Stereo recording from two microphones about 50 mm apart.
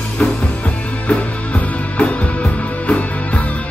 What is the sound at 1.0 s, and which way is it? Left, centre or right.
Music, left.